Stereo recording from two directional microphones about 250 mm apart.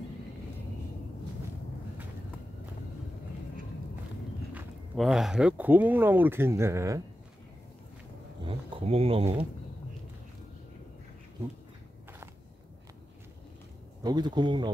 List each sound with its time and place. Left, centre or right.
4.6 s speech: centre
8.5 s speech: right
14.0 s speech: centre